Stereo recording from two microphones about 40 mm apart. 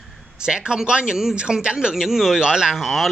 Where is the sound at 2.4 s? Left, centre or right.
Centre.